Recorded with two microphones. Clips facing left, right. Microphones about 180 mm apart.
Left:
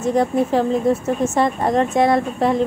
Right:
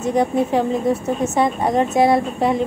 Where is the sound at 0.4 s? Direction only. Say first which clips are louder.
Left 1 dB; centre (ahead or behind).